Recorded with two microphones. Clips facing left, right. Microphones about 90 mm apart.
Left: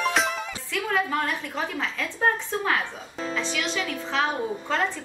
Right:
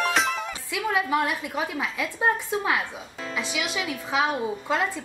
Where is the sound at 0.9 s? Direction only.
10° right (ahead or behind).